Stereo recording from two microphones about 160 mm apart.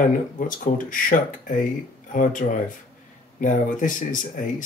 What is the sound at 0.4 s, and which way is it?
Speech, 55° left (ahead or behind).